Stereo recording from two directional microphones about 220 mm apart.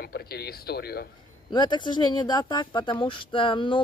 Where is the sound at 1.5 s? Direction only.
20° left (ahead or behind).